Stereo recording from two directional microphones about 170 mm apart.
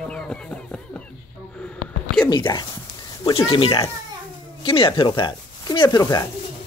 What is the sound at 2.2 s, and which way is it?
Speech, 25° left (ahead or behind).